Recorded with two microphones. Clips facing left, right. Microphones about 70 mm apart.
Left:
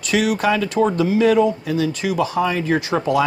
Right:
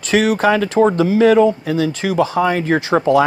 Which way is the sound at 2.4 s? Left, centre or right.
Right.